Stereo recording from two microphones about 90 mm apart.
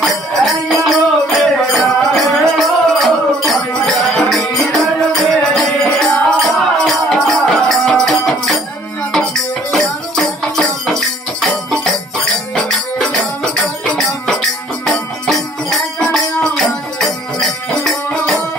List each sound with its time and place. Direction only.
0.0 s music: centre (ahead or behind)
12.5 s music: 5° left (ahead or behind)
14.9 s music: 5° left (ahead or behind)